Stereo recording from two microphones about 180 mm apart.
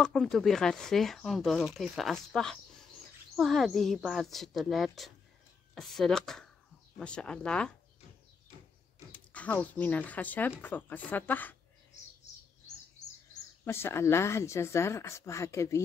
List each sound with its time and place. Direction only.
0.0 s speech: centre (ahead or behind)
9.1 s speech: 10° left (ahead or behind)
11.9 s bird: 40° left (ahead or behind)
13.7 s speech: 15° left (ahead or behind)